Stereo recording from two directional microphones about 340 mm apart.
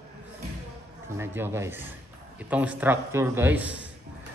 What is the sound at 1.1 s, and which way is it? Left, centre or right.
A man's voice, centre.